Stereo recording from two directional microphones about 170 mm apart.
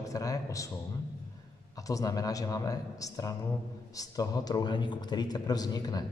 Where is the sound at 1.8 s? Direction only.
20° left (ahead or behind).